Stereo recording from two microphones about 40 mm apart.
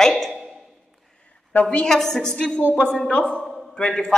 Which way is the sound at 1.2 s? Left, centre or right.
Left.